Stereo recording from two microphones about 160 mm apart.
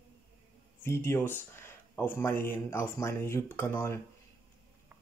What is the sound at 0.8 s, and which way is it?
Speech, 15° left (ahead or behind).